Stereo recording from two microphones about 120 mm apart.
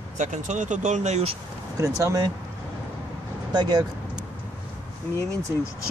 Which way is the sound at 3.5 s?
35° right (ahead or behind).